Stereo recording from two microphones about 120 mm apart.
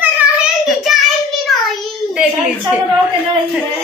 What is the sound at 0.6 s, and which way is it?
Child singing, centre (ahead or behind).